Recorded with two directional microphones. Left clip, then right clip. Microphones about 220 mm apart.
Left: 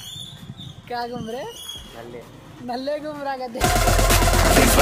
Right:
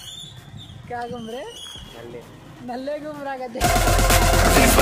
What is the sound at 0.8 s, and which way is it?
Speech, 15° left (ahead or behind).